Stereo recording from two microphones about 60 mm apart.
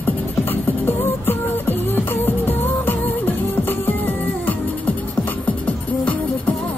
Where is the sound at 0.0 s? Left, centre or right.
Left.